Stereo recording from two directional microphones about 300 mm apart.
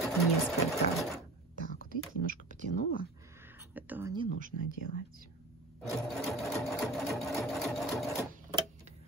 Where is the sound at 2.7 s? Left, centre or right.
Left.